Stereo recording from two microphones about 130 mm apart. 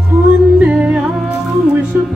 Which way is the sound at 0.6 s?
10° right (ahead or behind).